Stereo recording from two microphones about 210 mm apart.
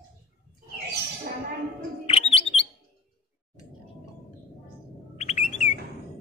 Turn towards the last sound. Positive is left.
turn(degrees=35)  # may be behind; listen again after turning